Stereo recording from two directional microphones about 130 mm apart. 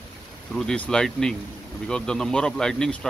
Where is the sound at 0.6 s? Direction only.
5° left (ahead or behind).